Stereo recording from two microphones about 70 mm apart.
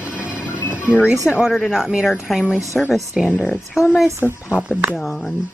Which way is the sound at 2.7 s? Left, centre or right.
Centre.